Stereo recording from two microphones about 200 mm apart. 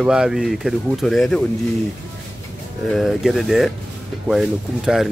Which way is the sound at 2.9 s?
Centre (ahead or behind).